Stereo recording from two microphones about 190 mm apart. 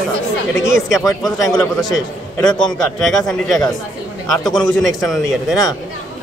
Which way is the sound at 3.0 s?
Centre (ahead or behind).